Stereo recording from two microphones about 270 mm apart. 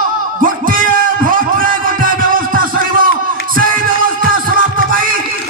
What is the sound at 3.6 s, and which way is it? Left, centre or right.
Music, right.